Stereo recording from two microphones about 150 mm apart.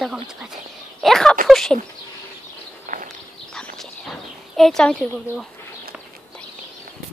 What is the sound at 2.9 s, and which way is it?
Walk, 60° right (ahead or behind).